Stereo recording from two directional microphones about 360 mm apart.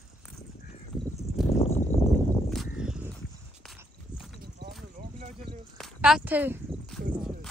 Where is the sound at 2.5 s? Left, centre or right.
Centre.